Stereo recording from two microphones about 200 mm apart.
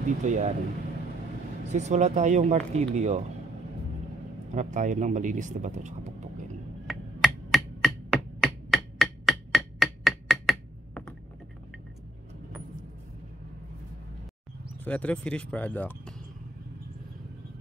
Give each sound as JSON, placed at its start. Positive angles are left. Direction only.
{"t": 0.2, "sound": "speech", "side_deg": -35}
{"t": 1.7, "sound": "speech", "side_deg": -35}
{"t": 4.6, "sound": "speech", "side_deg": -40}
{"t": 6.9, "sound": "a sound", "side_deg": 0}
{"t": 14.9, "sound": "speech", "side_deg": 5}